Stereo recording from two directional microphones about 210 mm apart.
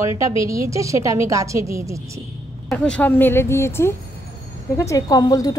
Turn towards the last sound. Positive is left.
turn(degrees=20)  # may be behind; listen again after turning